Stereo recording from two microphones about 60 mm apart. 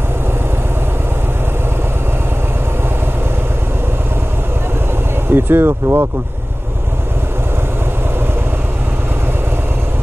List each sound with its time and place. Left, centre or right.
5.3 s speech: right